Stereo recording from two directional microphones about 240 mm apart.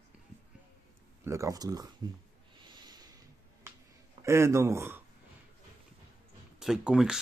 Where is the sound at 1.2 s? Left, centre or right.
Centre.